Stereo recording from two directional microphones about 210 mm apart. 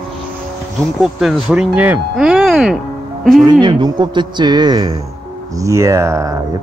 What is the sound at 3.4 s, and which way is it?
Speech, 20° right (ahead or behind).